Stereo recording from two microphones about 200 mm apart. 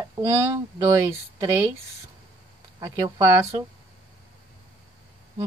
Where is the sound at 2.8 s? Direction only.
20° right (ahead or behind).